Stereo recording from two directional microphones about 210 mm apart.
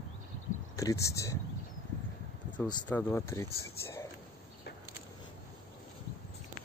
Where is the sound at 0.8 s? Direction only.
15° left (ahead or behind).